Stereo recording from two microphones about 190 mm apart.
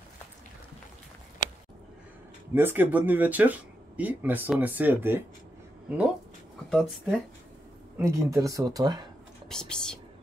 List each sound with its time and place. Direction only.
2.5 s speech: 10° right (ahead or behind)
6.7 s speech: centre (ahead or behind)
8.0 s speech: 15° right (ahead or behind)
9.5 s speech: 5° left (ahead or behind)